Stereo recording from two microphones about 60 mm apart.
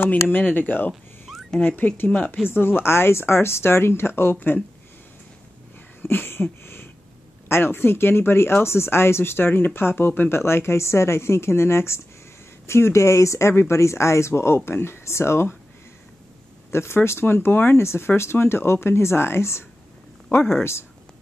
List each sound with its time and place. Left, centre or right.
0.0 s speech: left
2.5 s speech: left
6.0 s a sound: left
7.4 s speech: left
16.7 s speech: left
17.7 s speech: left